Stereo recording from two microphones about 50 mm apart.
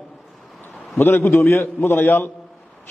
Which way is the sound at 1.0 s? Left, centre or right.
Left.